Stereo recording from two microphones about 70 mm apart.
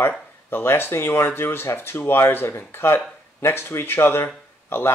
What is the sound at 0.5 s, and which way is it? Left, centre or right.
Speech, left.